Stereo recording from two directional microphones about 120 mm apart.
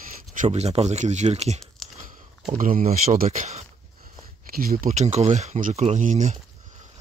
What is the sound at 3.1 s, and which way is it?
Speech, 75° right (ahead or behind).